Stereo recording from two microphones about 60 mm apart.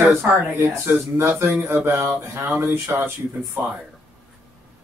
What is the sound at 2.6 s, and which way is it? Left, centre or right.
Speech, right.